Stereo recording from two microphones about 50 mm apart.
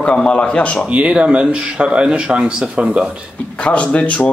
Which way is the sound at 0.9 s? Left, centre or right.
Right.